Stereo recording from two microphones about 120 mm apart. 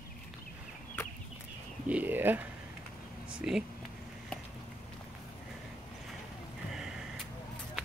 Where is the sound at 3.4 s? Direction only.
10° right (ahead or behind).